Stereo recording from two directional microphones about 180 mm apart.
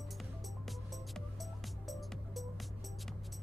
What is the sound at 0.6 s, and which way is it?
Music, centre (ahead or behind).